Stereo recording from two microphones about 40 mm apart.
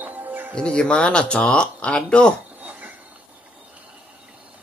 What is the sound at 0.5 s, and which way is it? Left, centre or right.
Speech, left.